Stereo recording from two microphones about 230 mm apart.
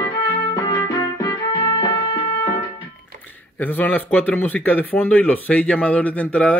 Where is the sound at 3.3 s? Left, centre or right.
Centre.